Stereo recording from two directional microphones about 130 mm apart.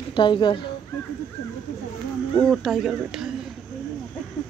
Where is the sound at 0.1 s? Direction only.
35° left (ahead or behind).